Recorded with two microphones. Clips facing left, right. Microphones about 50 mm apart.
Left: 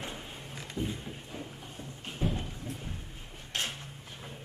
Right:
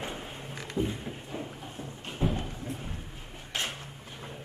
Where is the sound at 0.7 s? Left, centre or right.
Centre.